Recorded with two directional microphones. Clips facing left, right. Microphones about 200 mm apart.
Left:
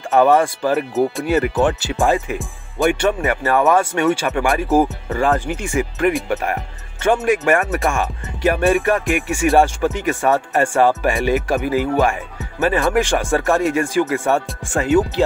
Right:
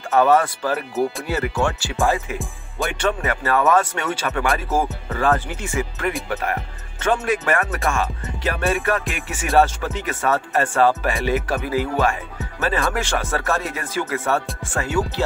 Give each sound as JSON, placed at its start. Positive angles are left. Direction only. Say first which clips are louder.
{"t": 0.1, "sound": "music", "louder": "left 3 dB", "side_deg": 15}
{"t": 1.2, "sound": "speech", "louder": "left 6 dB", "side_deg": 20}
{"t": 3.0, "sound": "music", "louder": "left 4 dB", "side_deg": 15}